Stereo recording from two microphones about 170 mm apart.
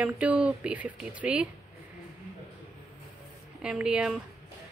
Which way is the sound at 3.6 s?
5° right (ahead or behind).